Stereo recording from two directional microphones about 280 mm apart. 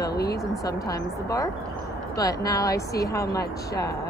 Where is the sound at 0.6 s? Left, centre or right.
Centre.